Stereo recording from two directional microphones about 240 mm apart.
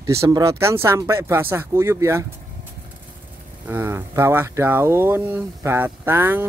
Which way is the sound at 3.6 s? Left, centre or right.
Centre.